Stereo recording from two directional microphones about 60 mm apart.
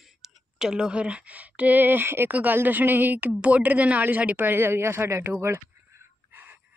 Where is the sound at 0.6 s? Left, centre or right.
Centre.